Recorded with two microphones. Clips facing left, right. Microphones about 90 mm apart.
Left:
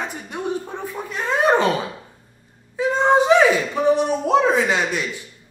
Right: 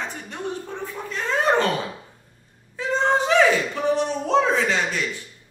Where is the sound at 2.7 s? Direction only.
15° left (ahead or behind).